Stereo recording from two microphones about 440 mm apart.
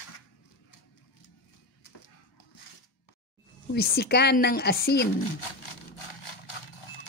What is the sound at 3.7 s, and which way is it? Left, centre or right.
Speech, left.